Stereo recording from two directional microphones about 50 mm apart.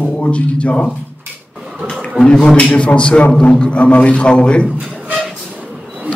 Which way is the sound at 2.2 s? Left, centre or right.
Left.